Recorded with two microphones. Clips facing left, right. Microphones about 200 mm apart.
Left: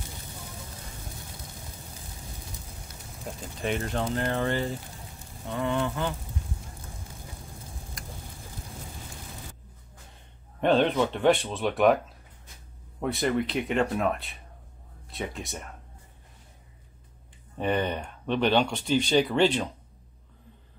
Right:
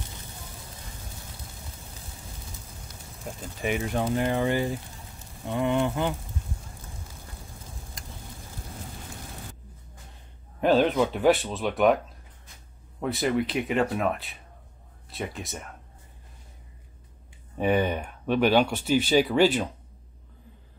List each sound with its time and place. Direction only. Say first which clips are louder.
3.3 s speech: right 1 dB; 5° right (ahead or behind)
5.5 s a sound: right 3 dB; 20° right (ahead or behind)
10.6 s speech: right 1 dB; centre (ahead or behind)
13.0 s speech: right 1 dB; centre (ahead or behind)
17.6 s speech: right 3 dB; 5° right (ahead or behind)